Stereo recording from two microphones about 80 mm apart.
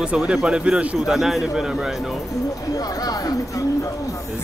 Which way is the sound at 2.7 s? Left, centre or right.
Left.